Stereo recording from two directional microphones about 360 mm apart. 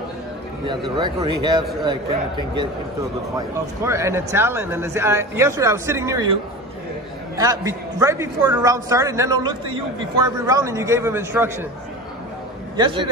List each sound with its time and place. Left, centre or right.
0.9 s speech: centre
7.3 s speech: centre
12.7 s speech: centre